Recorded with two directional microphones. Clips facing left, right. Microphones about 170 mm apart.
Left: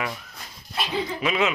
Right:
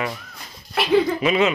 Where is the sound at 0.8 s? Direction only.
65° right (ahead or behind).